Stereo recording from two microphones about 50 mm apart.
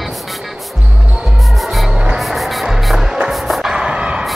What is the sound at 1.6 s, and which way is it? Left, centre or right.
Music, centre.